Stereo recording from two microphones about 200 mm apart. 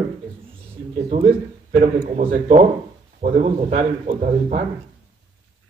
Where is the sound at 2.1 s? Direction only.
35° right (ahead or behind).